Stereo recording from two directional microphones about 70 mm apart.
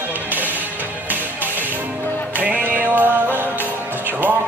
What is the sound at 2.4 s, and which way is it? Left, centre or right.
Music, right.